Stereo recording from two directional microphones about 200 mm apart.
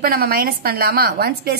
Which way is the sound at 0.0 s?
50° right (ahead or behind).